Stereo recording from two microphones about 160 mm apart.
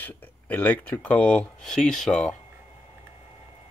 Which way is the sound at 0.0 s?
10° left (ahead or behind).